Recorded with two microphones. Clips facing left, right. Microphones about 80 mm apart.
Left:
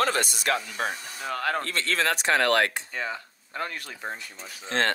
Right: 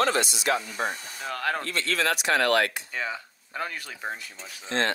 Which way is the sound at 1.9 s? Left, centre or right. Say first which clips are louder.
Left 1 dB; left.